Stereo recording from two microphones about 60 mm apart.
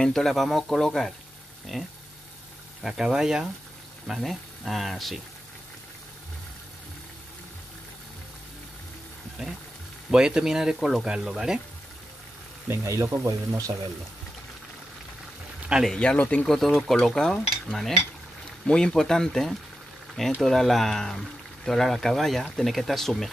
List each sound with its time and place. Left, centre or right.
0.0 s speech: centre
4.1 s speech: centre
9.4 s speech: centre
12.6 s speech: right
15.7 s speech: centre
16.2 s speech: left
16.4 s speech: centre